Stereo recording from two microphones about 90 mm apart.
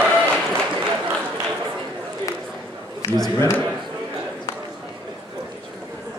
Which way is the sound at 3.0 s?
40° left (ahead or behind).